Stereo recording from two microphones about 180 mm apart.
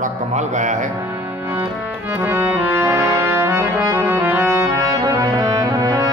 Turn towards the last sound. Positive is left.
turn(degrees=-20)  # may be behind; listen again after turning